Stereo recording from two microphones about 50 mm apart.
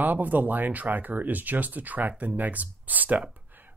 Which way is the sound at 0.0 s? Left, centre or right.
Right.